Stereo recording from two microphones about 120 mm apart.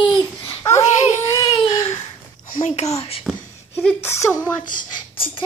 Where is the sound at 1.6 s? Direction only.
40° left (ahead or behind).